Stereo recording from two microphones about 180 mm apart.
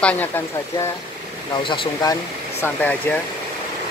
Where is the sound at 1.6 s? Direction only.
25° left (ahead or behind).